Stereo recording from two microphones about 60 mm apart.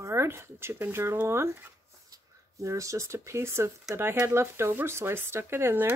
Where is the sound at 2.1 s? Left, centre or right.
Right.